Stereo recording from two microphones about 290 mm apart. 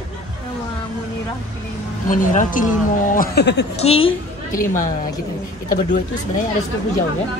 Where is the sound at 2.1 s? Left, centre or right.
Left.